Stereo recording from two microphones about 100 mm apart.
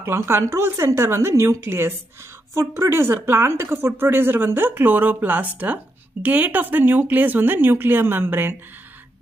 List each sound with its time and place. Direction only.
0.0 s speech: 25° right (ahead or behind)